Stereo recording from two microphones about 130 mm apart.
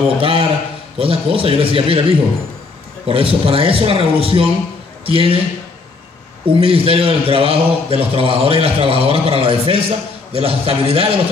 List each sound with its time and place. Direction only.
0.2 s a man's voice: 45° right (ahead or behind)
6.4 s a man's voice: 45° right (ahead or behind)